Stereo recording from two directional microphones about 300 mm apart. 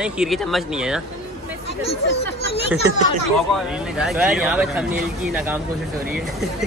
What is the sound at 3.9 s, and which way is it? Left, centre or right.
Speech, centre.